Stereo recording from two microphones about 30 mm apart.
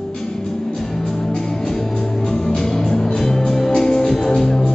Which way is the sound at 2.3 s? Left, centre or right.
Left.